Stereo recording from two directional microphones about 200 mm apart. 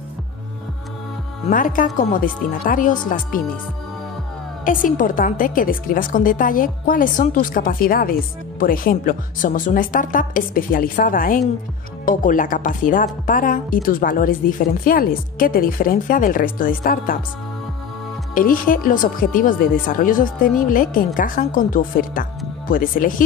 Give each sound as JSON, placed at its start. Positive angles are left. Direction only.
{"t": 1.5, "sound": "a woman's voice", "side_deg": 40}
{"t": 4.6, "sound": "a woman's voice", "side_deg": 40}
{"t": 18.3, "sound": "a woman's voice", "side_deg": 45}